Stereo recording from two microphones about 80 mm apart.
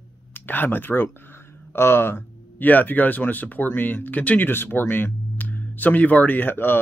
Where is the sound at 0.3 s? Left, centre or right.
Left.